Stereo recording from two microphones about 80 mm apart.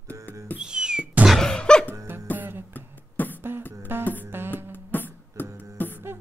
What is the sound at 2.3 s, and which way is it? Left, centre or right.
Music, right.